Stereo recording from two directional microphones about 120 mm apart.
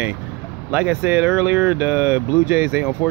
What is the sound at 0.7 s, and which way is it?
Speech, 15° right (ahead or behind).